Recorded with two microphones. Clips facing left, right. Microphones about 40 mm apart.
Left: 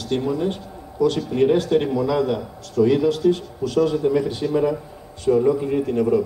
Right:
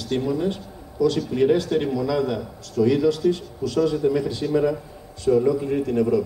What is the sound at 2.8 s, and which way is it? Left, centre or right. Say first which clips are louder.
Speech: left 2 dB; centre.